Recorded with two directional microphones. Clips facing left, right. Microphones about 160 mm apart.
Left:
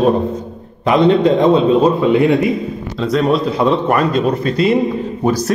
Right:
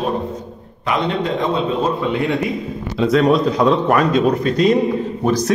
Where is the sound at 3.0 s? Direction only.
Centre (ahead or behind).